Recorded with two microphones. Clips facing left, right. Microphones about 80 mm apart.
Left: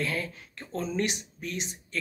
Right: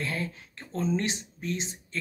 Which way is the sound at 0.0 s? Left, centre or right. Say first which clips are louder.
Left 1 dB; right.